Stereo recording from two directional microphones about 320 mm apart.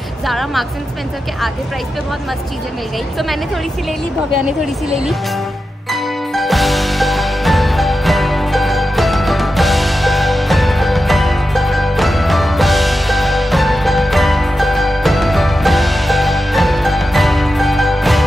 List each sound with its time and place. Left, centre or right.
0.3 s a woman's voice: centre
5.9 s music: centre